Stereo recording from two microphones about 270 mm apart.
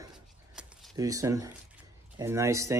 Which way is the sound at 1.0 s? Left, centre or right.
Centre.